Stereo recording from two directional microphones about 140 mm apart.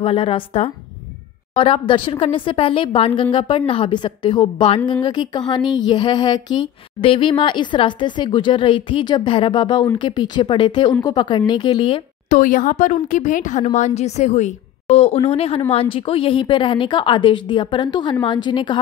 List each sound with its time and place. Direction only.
0.0 s speech: 40° left (ahead or behind)
12.3 s speech: 70° left (ahead or behind); by 18.8 s 35° left (ahead or behind)